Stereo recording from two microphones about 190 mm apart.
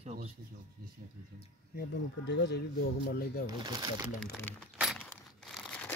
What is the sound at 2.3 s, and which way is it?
Speech, 65° left (ahead or behind).